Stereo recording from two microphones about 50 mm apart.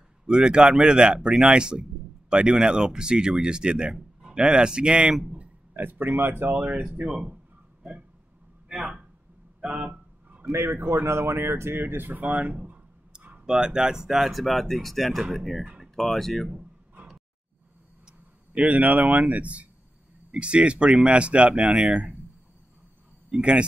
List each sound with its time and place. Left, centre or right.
0.3 s a man's voice: centre
5.4 s speech: right
8.6 s a sound: centre
10.5 s speech: right
12.2 s speech: right; by 16.4 s centre
18.5 s speech: right
23.3 s speech: right